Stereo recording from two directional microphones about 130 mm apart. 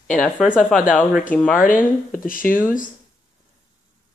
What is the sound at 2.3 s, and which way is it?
Speech, 90° left.